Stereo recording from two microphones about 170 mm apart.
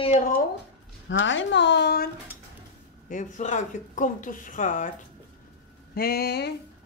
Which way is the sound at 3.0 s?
50° left (ahead or behind).